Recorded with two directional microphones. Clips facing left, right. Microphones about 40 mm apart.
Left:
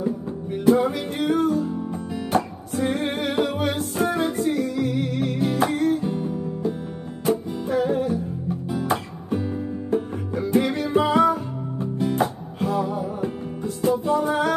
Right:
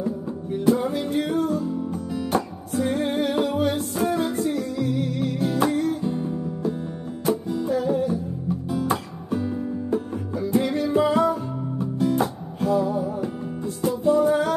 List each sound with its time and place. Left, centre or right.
0.7 s music: left
3.0 s music: left